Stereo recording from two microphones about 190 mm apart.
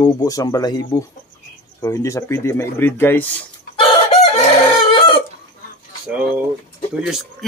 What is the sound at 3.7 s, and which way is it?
Chicken, 30° left (ahead or behind).